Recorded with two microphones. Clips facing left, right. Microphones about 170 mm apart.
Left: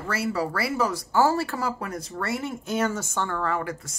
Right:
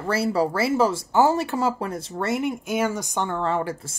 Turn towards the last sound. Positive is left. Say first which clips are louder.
# right 3 dB
turn(degrees=-30)  # may be behind; listen again after turning